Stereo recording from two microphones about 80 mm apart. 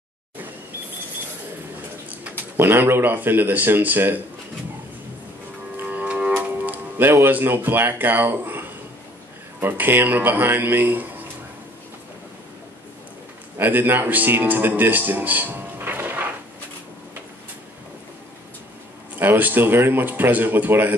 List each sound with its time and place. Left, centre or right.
2.0 s speech: right
5.8 s music: right
6.6 s speech: right
13.6 s speech: right
19.1 s speech: right